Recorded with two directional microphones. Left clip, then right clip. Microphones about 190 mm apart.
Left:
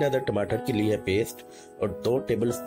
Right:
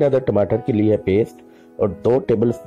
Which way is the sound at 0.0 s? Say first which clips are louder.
Right 9 dB; 40° right (ahead or behind).